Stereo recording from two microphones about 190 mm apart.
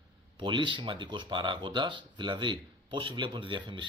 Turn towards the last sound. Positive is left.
turn(degrees=-25)  # may be behind; listen again after turning